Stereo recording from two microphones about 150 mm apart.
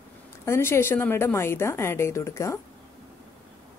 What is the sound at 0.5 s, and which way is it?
A woman's voice, 15° left (ahead or behind).